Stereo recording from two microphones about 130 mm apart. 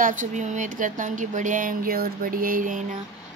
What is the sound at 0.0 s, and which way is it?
Speech, 90° right.